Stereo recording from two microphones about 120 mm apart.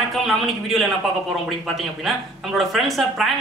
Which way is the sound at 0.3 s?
Centre (ahead or behind).